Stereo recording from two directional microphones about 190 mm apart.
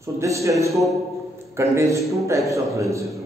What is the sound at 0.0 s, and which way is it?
A man's voice, 15° right (ahead or behind).